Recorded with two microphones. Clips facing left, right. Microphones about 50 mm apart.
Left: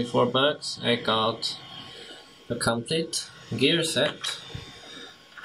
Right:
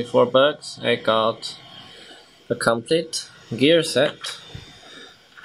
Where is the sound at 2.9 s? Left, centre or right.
Right.